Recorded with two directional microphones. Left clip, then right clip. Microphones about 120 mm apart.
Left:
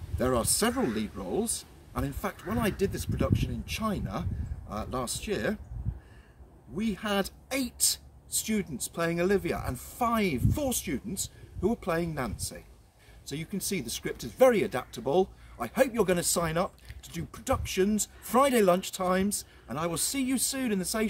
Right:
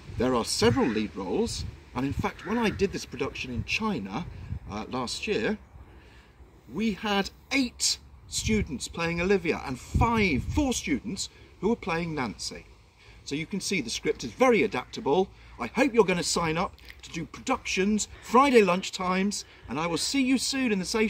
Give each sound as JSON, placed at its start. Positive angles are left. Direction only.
{"t": 0.2, "sound": "speech", "side_deg": 50}
{"t": 6.8, "sound": "speech", "side_deg": 50}